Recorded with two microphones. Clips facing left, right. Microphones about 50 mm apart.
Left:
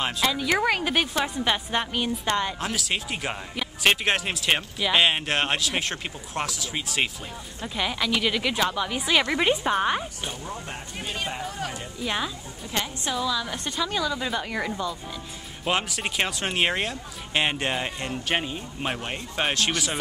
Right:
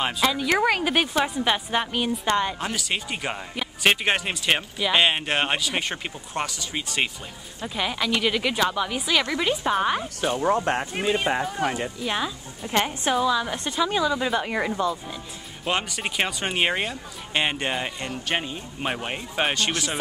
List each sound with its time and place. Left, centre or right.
0.0 s speech: centre
9.0 s a woman's voice: centre
9.6 s speech: centre
10.4 s speech: right
12.0 s speech: centre
12.6 s a woman's voice: right
13.2 s a woman's voice: right
13.5 s speech: centre
15.6 s speech: centre